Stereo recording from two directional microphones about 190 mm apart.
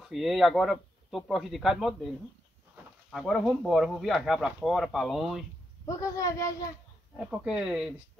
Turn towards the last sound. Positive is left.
turn(degrees=-5)  # may be behind; listen again after turning